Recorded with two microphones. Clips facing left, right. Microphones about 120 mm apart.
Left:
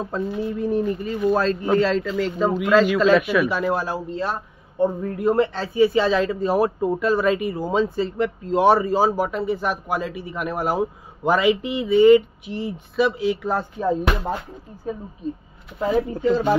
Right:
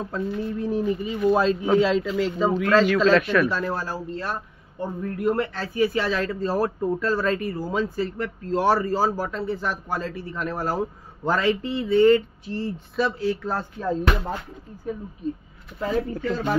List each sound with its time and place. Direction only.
0.0 s speech: 20° left (ahead or behind)
0.4 s a man's voice: 5° left (ahead or behind)
15.8 s a man's voice: 15° left (ahead or behind)